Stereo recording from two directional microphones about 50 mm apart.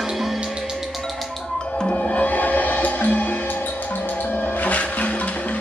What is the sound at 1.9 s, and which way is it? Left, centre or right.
Music, left.